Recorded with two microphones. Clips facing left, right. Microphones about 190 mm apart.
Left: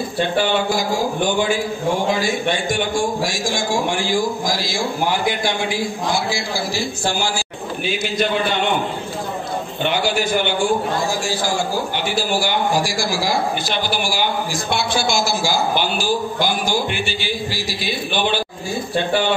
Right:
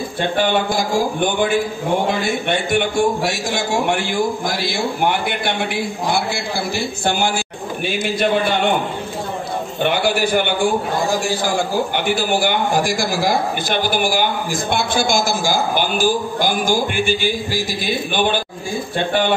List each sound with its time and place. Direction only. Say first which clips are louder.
1.2 s a man's voice: right 1 dB; 55° right (ahead or behind)
9.8 s a man's voice: right 2 dB; 55° right (ahead or behind)